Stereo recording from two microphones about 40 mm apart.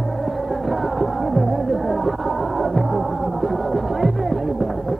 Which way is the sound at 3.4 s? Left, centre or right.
Centre.